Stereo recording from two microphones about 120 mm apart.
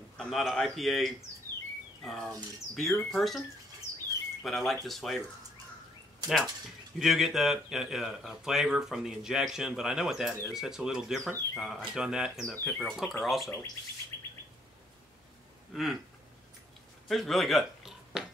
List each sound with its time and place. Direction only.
0.2 s speech: centre (ahead or behind)
7.0 s speech: 5° right (ahead or behind)
14.1 s bird: 30° right (ahead or behind)
15.7 s speech: centre (ahead or behind)
17.1 s speech: centre (ahead or behind)